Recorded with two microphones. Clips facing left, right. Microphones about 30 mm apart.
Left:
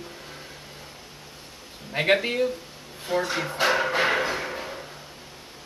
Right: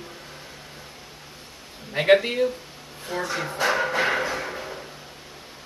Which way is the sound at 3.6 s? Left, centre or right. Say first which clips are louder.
Even; centre.